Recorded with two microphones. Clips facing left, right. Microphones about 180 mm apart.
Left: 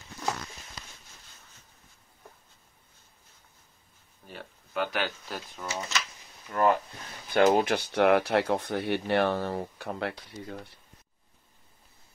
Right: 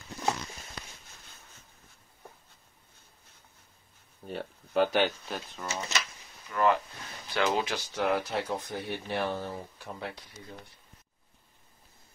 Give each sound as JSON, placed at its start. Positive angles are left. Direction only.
{"t": 4.4, "sound": "speech", "side_deg": -30}
{"t": 5.3, "sound": "speech", "side_deg": 5}
{"t": 6.5, "sound": "speech", "side_deg": 45}